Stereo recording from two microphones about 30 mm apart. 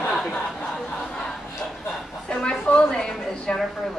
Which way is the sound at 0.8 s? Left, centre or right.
Left.